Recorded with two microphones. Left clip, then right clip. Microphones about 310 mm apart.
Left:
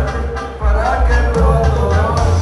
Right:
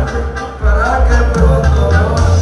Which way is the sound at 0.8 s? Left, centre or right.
Centre.